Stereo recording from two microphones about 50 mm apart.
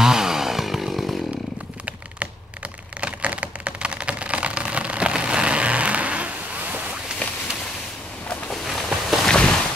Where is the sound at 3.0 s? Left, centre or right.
Right.